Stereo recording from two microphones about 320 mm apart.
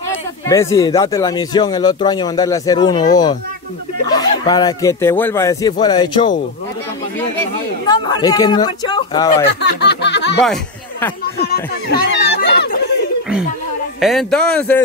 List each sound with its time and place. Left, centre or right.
0.1 s speech: centre
7.8 s speech: centre
9.6 s snicker: left
10.4 s a sound: centre
11.3 s chatter: left
14.0 s a man's voice: centre